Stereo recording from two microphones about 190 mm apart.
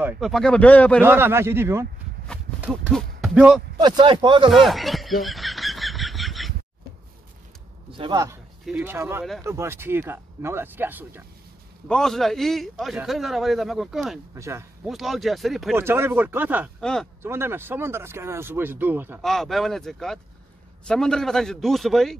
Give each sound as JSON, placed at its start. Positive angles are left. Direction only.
{"t": 0.0, "sound": "a man's voice", "side_deg": 0}
{"t": 1.0, "sound": "speech", "side_deg": -10}
{"t": 2.7, "sound": "a man's voice", "side_deg": 5}
{"t": 3.7, "sound": "speech", "side_deg": -20}
{"t": 4.5, "sound": "a sound", "side_deg": 0}
{"t": 8.0, "sound": "speech", "side_deg": -20}
{"t": 8.6, "sound": "speech", "side_deg": -5}
{"t": 11.9, "sound": "a man's voice", "side_deg": 0}
{"t": 14.3, "sound": "speech", "side_deg": -15}
{"t": 14.9, "sound": "a man's voice", "side_deg": 0}
{"t": 15.7, "sound": "speech", "side_deg": -10}
{"t": 16.8, "sound": "a man's voice", "side_deg": 5}
{"t": 17.2, "sound": "speech", "side_deg": -15}
{"t": 19.2, "sound": "a man's voice", "side_deg": 0}